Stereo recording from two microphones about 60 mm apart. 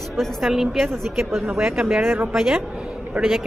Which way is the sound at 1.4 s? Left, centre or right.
Centre.